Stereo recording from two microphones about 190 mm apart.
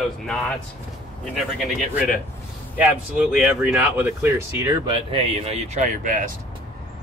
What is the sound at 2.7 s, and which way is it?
Speech, 5° right (ahead or behind).